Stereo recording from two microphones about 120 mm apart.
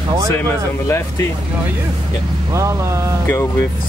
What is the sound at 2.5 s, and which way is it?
Speech, 25° right (ahead or behind).